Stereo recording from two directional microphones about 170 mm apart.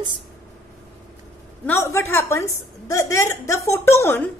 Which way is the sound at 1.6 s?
15° left (ahead or behind).